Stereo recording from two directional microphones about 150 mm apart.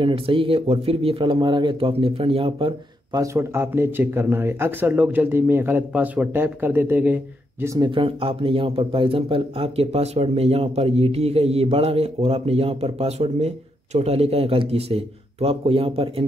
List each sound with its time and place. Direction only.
0.0 s a man's voice: 35° right (ahead or behind)
3.3 s speech: 15° right (ahead or behind)
7.9 s a man's voice: 35° right (ahead or behind)